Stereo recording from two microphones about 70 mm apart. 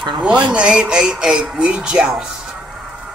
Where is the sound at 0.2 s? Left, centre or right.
Centre.